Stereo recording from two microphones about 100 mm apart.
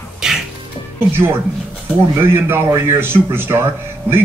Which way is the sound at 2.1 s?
25° right (ahead or behind).